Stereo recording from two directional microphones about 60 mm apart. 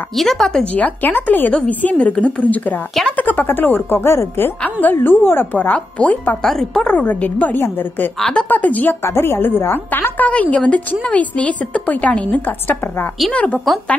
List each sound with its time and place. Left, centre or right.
0.1 s speech: centre
0.7 s a woman's voice: left
6.4 s speech: centre
6.9 s a woman's voice: left
9.0 s a woman's voice: left